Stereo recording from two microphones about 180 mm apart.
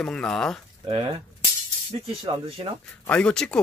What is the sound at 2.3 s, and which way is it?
Speech, 25° right (ahead or behind).